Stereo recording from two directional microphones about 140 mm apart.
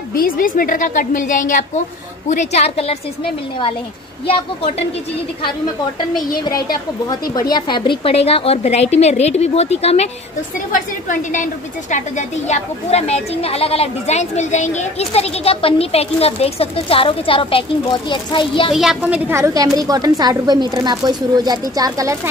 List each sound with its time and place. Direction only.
0.1 s a woman's voice: 90° left; by 1.7 s 70° left (ahead or behind)
2.2 s speech: 55° left (ahead or behind)
7.1 s speech: 30° left (ahead or behind); by 10.0 s 50° left (ahead or behind)
10.7 s a woman's voice: 65° left (ahead or behind); by 18.8 s 35° left (ahead or behind)
18.8 s a woman's voice: 5° right (ahead or behind); by 22.3 s 25° right (ahead or behind)